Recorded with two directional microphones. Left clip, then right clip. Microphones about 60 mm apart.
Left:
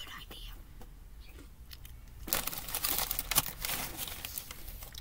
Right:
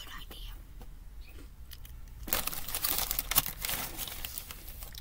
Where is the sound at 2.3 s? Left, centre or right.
Right.